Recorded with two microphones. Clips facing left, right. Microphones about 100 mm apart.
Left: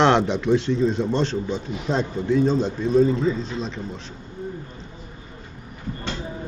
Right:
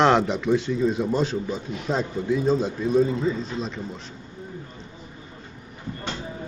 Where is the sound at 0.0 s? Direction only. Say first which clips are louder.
Left 1 dB; centre (ahead or behind).